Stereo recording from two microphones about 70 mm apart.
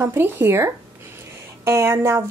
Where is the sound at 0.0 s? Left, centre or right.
Right.